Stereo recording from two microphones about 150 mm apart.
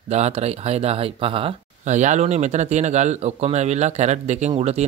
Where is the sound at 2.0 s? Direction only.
50° right (ahead or behind).